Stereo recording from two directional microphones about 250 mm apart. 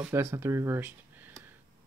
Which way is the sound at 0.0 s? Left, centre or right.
Centre.